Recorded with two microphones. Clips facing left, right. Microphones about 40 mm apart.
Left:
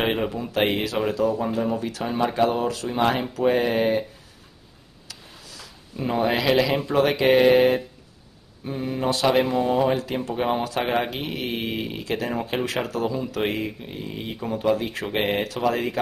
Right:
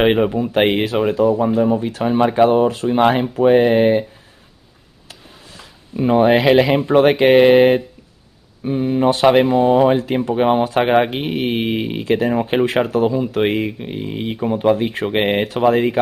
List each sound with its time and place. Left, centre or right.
0.2 s speech: centre
0.5 s speech: right
5.0 s speech: right